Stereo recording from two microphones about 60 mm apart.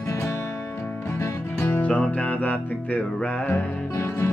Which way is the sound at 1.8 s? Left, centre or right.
Left.